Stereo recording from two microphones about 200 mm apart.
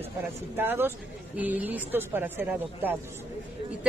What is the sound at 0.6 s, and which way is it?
A woman's voice, 10° right (ahead or behind).